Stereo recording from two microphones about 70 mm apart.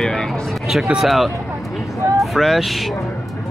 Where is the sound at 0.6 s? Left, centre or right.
Centre.